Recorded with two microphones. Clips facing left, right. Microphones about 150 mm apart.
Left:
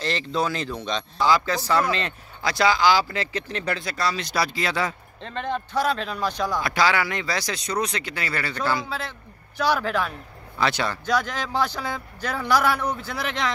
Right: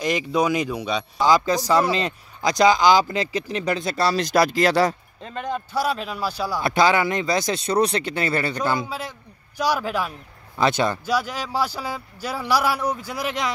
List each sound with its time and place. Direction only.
0.0 s speech: 15° right (ahead or behind)
3.8 s speech: 30° right (ahead or behind)
4.2 s speech: 45° right (ahead or behind)
5.2 s speech: 10° right (ahead or behind)
6.6 s speech: 20° right (ahead or behind)
11.1 s speech: 10° right (ahead or behind)